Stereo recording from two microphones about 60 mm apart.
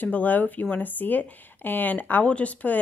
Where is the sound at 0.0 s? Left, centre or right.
Left.